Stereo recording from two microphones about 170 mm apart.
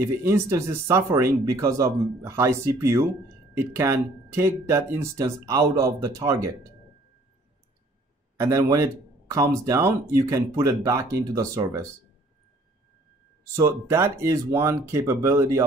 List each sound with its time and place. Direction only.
0.0 s speech: 15° right (ahead or behind)
8.4 s a man's voice: 20° right (ahead or behind)
13.6 s speech: 15° right (ahead or behind)